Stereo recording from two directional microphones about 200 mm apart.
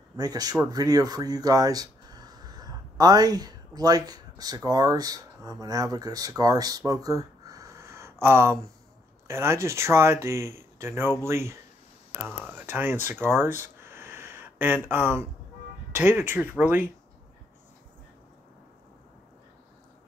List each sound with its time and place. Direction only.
0.2 s speech: 20° right (ahead or behind)